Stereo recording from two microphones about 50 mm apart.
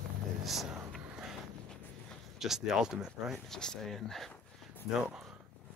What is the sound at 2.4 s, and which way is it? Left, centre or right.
Speech, centre.